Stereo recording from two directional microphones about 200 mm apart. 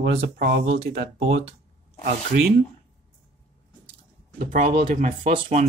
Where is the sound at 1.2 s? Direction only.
30° right (ahead or behind).